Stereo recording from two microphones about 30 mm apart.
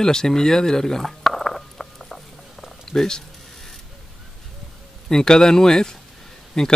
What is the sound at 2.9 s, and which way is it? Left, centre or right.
Speech, centre.